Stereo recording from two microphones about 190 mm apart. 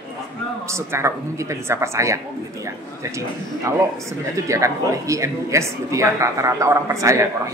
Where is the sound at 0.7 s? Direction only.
15° right (ahead or behind).